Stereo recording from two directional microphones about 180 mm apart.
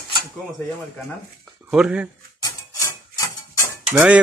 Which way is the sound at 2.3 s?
20° left (ahead or behind).